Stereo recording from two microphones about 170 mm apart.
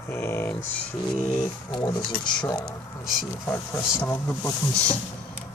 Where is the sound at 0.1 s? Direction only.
15° left (ahead or behind).